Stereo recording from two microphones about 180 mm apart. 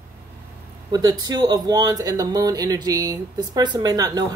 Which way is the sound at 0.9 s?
20° right (ahead or behind).